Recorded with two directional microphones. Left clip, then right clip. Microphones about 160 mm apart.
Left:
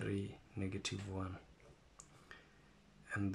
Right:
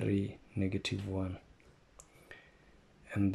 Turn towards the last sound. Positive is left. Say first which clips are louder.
# right 5 dB
turn(degrees=-25)  # may be behind; listen again after turning